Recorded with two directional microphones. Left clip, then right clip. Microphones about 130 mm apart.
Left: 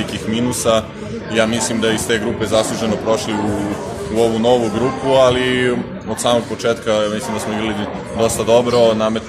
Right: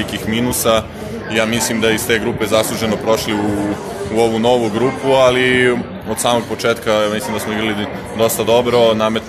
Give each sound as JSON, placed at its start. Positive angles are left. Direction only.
{"t": 0.3, "sound": "speech", "side_deg": -20}